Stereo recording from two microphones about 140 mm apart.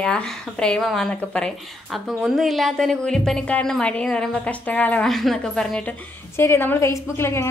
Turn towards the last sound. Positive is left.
turn(degrees=20)  # may be behind; listen again after turning